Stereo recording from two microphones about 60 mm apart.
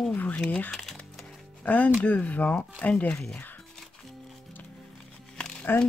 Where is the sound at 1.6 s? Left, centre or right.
Left.